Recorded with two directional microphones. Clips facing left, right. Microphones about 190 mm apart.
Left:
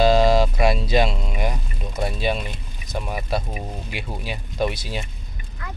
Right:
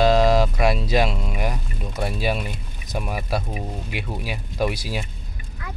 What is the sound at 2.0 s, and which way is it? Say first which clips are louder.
Speech: even; 5° right (ahead or behind).